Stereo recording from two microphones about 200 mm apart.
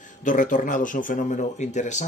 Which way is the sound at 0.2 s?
40° left (ahead or behind).